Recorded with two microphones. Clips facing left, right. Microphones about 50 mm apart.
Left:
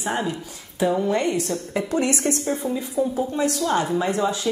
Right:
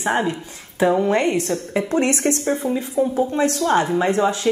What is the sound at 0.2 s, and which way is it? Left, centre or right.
A woman's voice, right.